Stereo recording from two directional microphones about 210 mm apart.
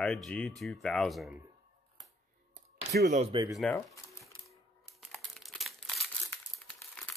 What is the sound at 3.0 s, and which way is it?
Speech, 35° right (ahead or behind).